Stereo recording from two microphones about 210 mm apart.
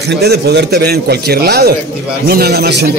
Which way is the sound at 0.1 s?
50° right (ahead or behind).